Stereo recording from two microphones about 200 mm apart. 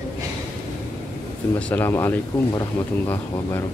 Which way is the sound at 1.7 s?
10° left (ahead or behind).